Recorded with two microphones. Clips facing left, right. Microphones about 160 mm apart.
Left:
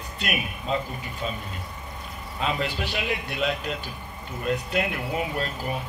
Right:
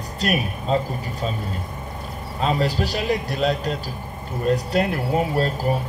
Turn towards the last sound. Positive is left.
turn(degrees=-40)  # may be behind; listen again after turning